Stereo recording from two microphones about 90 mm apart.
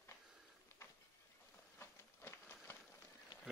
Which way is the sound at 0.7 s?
25° left (ahead or behind).